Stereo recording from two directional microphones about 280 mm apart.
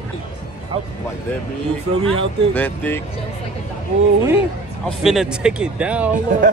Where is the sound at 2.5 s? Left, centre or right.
Centre.